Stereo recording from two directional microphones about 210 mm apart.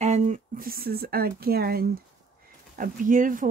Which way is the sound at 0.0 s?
35° right (ahead or behind).